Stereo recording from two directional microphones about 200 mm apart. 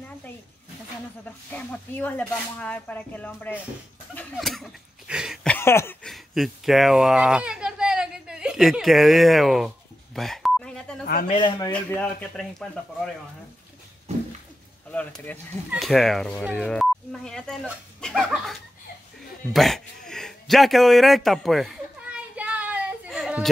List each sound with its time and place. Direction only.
1.5 s speech: 5° left (ahead or behind)
4.1 s a sound: 5° left (ahead or behind)
6.1 s a child's voice: centre (ahead or behind)
10.1 s beep: centre (ahead or behind)
11.1 s a man's voice: 45° left (ahead or behind)
11.3 s a man's voice: 25° left (ahead or behind)
11.7 s speech: 5° left (ahead or behind)
14.9 s speech: 5° left (ahead or behind)
19.5 s a sound: centre (ahead or behind)